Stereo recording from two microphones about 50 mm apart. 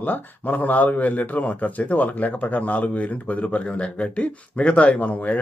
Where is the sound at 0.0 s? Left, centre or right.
Left.